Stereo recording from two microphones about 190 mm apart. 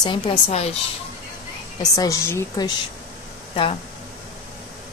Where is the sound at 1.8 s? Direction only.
20° left (ahead or behind).